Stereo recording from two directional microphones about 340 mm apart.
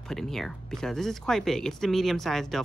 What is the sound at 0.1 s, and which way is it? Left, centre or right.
Speech, centre.